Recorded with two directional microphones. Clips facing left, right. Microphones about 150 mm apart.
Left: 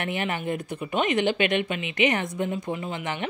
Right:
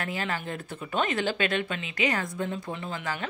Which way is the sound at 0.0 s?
20° left (ahead or behind).